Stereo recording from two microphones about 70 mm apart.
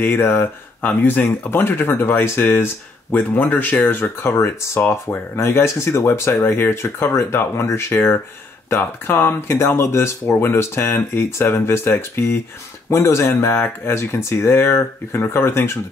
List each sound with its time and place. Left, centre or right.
0.0 s speech: left
4.4 s speech: left